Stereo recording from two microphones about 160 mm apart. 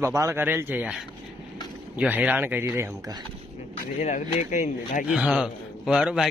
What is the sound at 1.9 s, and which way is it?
Speech, 10° right (ahead or behind).